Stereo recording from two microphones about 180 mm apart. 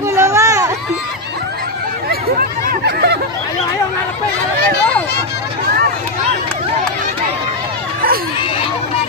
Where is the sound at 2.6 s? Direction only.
60° right (ahead or behind).